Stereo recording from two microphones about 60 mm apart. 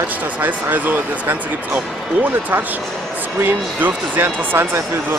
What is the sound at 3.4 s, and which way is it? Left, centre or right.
Speech, right.